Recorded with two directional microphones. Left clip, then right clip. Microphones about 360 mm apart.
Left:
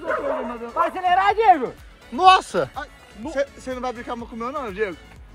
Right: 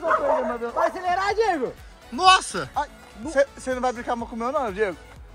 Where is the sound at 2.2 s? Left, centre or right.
Centre.